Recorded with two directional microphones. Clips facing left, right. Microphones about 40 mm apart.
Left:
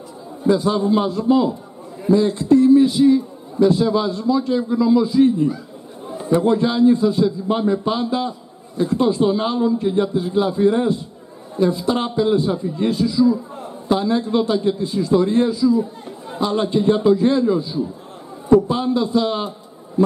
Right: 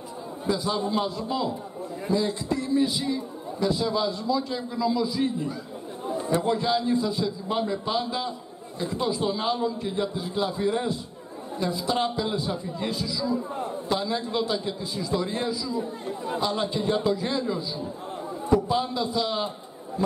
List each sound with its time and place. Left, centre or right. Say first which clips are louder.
0.5 s a man's voice: left 10 dB; centre
2.6 s a sound: left 11 dB; centre
3.5 s a man's voice: left 10 dB; centre